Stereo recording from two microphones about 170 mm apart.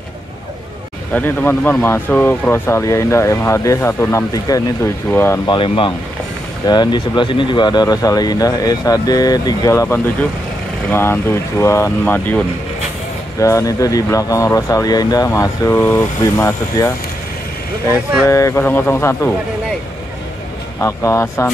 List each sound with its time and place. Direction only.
1.1 s speech: 10° left (ahead or behind)
5.5 s speech: 30° left (ahead or behind)
18.2 s speech: 15° left (ahead or behind)
20.8 s speech: 15° left (ahead or behind)